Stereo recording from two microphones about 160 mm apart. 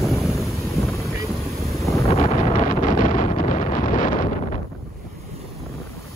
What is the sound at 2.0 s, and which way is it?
Wind noise, 40° left (ahead or behind).